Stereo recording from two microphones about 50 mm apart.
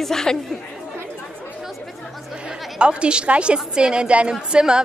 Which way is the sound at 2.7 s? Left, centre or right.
Centre.